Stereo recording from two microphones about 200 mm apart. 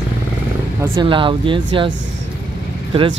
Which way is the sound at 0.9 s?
25° right (ahead or behind).